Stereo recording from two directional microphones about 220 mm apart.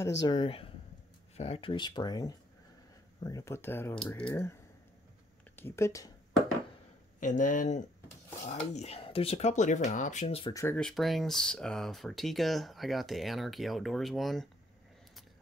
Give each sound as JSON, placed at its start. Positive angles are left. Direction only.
{"t": 0.0, "sound": "speech", "side_deg": 15}
{"t": 5.6, "sound": "speech", "side_deg": 10}
{"t": 7.2, "sound": "speech", "side_deg": 35}
{"t": 10.5, "sound": "speech", "side_deg": 15}
{"t": 10.8, "sound": "speech", "side_deg": 0}